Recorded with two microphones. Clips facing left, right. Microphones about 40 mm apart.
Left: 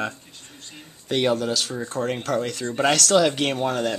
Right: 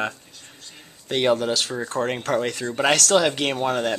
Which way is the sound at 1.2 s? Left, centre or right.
Right.